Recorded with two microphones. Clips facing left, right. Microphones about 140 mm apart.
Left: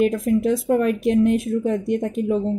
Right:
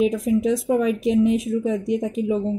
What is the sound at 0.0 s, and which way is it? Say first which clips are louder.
Speech: left 1 dB; centre (ahead or behind).